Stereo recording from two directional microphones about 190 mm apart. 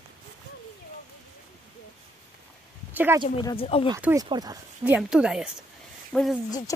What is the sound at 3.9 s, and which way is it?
Speech, 15° right (ahead or behind).